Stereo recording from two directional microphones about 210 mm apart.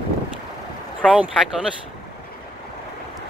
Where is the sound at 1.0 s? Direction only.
5° right (ahead or behind).